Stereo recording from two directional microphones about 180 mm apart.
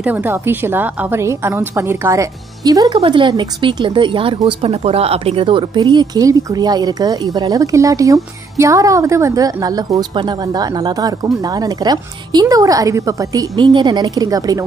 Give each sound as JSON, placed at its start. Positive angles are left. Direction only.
{"t": 0.0, "sound": "a woman's voice", "side_deg": -10}